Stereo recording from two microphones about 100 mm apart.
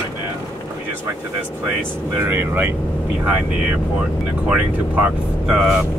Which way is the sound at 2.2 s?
20° right (ahead or behind).